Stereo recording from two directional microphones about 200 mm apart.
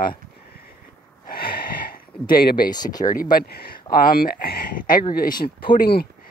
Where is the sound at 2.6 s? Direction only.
20° left (ahead or behind).